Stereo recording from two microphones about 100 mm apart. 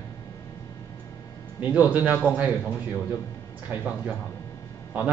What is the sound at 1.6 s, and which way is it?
Speech, 15° right (ahead or behind).